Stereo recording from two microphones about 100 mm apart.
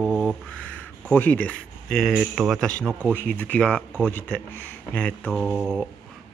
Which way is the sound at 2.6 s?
10° left (ahead or behind).